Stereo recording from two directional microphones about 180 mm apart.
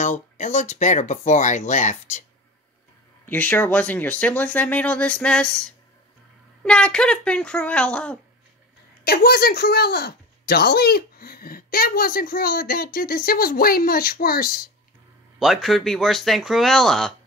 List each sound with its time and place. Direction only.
0.0 s speech: 45° left (ahead or behind)
3.3 s speech: 10° left (ahead or behind)
6.6 s speech: 5° left (ahead or behind)
9.0 s speech: 60° left (ahead or behind)
15.3 s speech: centre (ahead or behind)